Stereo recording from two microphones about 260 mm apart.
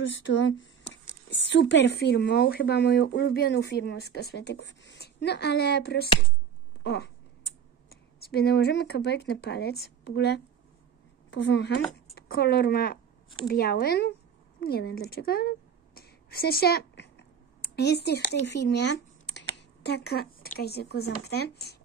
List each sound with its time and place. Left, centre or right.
0.0 s speech: left
6.8 s a sound: left
7.9 s speech: left